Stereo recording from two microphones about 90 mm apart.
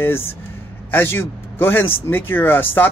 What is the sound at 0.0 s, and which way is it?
Speech, 25° left (ahead or behind).